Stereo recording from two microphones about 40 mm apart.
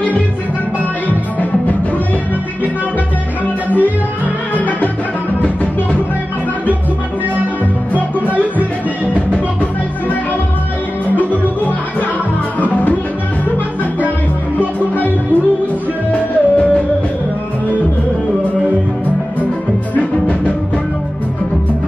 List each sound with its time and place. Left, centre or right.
8.3 s music: right
12.5 s music: left
16.1 s music: left
20.0 s music: left